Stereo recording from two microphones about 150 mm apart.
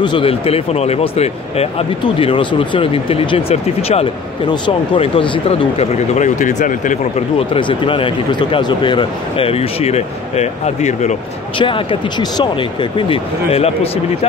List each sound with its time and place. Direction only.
0.0 s speech: 35° left (ahead or behind)
6.1 s speech: 55° left (ahead or behind)
7.3 s speech: 35° left (ahead or behind)
11.5 s speech: 35° left (ahead or behind)